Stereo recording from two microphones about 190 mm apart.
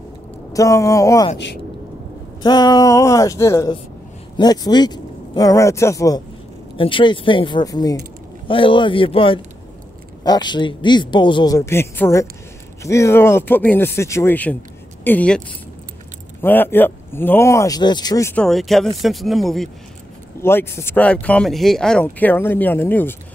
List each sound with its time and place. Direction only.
0.5 s speech: 15° left (ahead or behind)
2.4 s speech: 20° left (ahead or behind)
18.3 s speech: 5° left (ahead or behind)
20.3 s speech: 15° left (ahead or behind)